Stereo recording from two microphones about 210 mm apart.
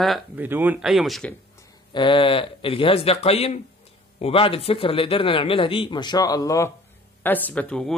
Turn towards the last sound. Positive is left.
turn(degrees=5)  # may be behind; listen again after turning